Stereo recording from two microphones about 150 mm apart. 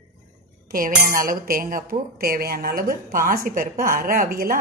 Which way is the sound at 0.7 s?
70° right (ahead or behind).